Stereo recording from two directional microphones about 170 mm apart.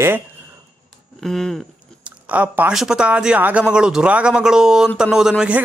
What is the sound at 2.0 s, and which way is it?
Speech, 10° right (ahead or behind).